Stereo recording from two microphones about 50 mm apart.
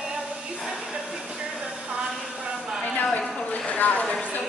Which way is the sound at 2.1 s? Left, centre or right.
Centre.